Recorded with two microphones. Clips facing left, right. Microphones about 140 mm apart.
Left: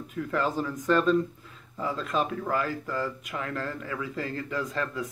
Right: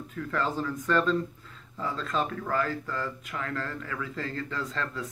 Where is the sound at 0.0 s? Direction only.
20° left (ahead or behind).